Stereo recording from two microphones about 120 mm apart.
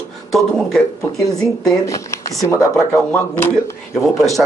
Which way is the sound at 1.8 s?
25° left (ahead or behind).